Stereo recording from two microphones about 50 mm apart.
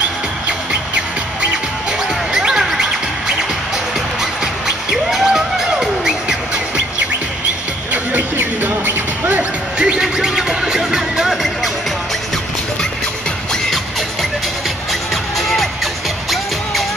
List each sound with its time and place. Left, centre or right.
0.5 s music: right
5.2 s music: centre
7.9 s music: right
9.8 s music: right
10.0 s music: centre
14.9 s music: centre